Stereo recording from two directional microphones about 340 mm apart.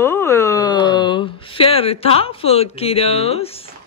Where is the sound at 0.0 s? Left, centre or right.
Centre.